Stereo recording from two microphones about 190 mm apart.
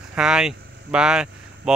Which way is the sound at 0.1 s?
5° right (ahead or behind).